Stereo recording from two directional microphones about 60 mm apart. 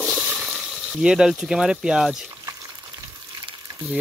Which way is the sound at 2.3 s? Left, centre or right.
Right.